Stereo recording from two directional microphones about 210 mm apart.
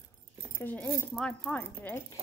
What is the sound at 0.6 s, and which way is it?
Speech, 10° left (ahead or behind).